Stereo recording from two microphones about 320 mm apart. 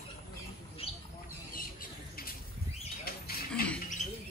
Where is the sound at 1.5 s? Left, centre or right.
Left.